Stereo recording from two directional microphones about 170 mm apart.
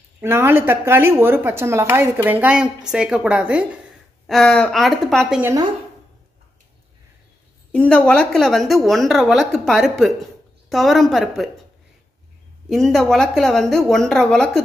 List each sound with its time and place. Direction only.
0.2 s a woman's voice: 15° right (ahead or behind)
5.4 s a woman's voice: 20° right (ahead or behind)
7.7 s a woman's voice: 5° left (ahead or behind)
12.6 s a woman's voice: centre (ahead or behind)